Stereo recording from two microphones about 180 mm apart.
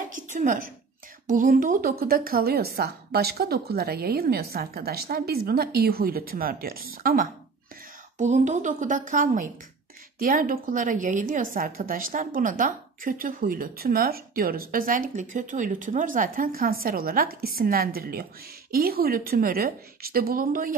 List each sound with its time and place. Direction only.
0.1 s a sound: 45° right (ahead or behind)
1.2 s a woman's voice: 50° right (ahead or behind)
8.2 s a woman's voice: 40° right (ahead or behind)